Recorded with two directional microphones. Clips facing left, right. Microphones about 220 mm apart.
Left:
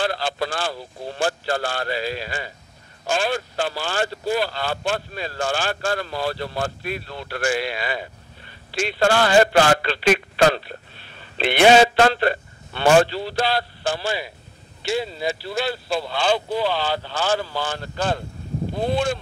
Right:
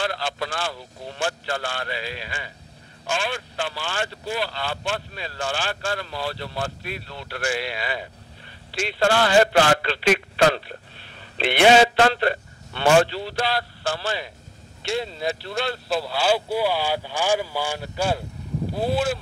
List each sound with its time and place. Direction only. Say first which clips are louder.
0.0 s speech: left 3 dB; 35° left (ahead or behind)
13.8 s speech: left 2 dB; 15° left (ahead or behind); by 19.1 s 5° right (ahead or behind)